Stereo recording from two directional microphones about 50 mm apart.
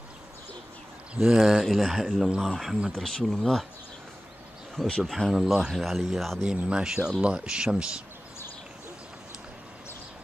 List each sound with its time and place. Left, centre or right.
1.1 s a man's voice: centre
1.7 s speech: centre
2.9 s speech: centre
5.0 s speech: centre
5.3 s speech: centre
6.4 s a man's voice: centre